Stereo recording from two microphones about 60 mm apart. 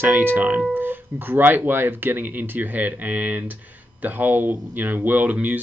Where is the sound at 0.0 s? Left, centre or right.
Right.